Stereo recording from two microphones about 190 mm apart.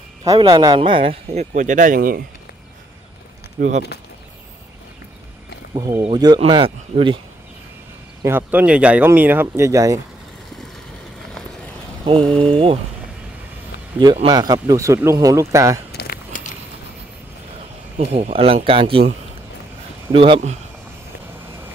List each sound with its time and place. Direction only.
0.2 s speech: 20° right (ahead or behind); by 2.2 s 50° right (ahead or behind)
3.5 s speech: 45° right (ahead or behind)
5.8 s speech: 20° right (ahead or behind)
8.2 s speech: 10° right (ahead or behind)
12.2 s speech: 5° left (ahead or behind)
12.4 s speech: 30° right (ahead or behind)
13.9 s speech: 25° right (ahead or behind)
15.9 s a sound: 55° left (ahead or behind)
17.9 s speech: 35° right (ahead or behind)
20.1 s speech: 30° right (ahead or behind)